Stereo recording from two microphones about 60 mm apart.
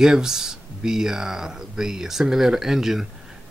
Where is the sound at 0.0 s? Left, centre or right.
Centre.